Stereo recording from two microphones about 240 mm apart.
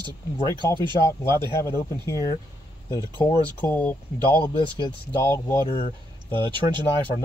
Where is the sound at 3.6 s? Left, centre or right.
Centre.